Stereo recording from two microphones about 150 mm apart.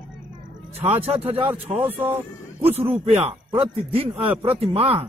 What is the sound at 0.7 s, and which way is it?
A man's voice, 40° right (ahead or behind).